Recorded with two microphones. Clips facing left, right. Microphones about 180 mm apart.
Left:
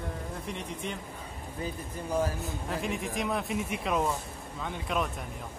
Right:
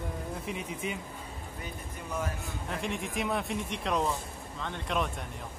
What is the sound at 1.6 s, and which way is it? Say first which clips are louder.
Speech: left 8 dB; 30° left (ahead or behind).